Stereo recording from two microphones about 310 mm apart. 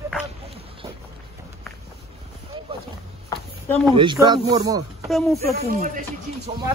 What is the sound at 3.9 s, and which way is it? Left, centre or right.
Speech, centre.